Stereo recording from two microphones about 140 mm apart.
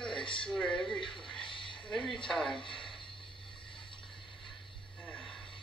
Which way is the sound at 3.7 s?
35° left (ahead or behind).